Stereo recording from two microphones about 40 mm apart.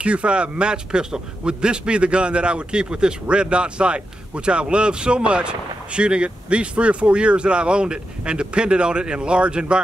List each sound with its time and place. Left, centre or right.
0.0 s a man's voice: right